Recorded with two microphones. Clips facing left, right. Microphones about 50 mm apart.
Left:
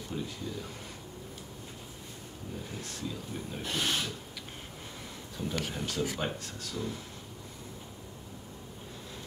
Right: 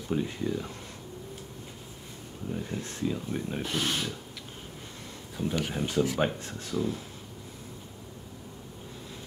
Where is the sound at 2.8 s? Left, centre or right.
Right.